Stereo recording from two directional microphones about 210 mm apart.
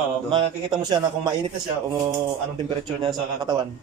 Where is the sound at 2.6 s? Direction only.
20° right (ahead or behind).